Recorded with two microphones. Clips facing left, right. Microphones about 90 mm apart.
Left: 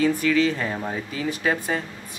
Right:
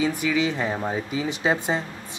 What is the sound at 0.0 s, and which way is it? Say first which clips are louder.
Speech: left 3 dB; 15° right (ahead or behind).